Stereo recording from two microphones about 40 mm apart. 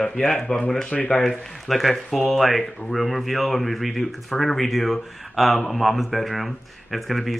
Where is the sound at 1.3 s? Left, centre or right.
Centre.